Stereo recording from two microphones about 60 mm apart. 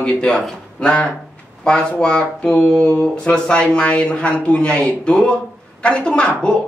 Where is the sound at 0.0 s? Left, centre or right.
Centre.